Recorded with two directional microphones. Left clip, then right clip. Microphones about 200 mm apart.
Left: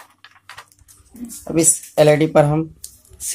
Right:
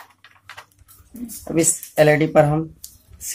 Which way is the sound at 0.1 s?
Centre (ahead or behind).